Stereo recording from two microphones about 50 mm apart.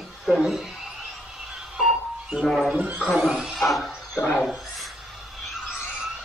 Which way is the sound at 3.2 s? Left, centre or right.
Centre.